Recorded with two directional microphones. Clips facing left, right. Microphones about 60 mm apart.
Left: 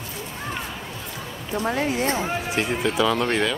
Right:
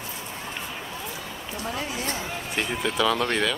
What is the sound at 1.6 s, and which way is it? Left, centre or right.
Speech, left.